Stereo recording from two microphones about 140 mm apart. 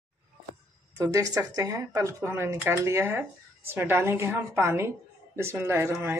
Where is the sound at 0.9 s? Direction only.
20° right (ahead or behind).